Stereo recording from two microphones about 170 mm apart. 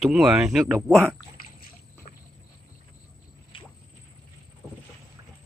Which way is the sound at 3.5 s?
30° left (ahead or behind).